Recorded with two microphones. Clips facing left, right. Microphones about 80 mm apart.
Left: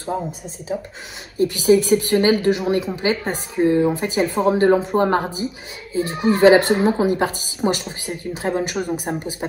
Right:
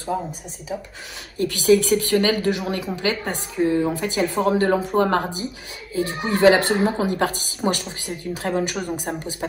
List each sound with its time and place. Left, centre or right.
1.4 s a woman's voice: left
6.3 s a woman's voice: left